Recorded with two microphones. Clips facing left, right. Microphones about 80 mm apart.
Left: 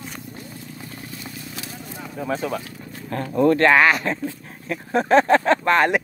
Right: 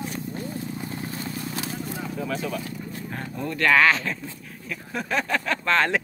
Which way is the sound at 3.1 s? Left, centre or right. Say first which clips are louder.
Left 15 dB; left.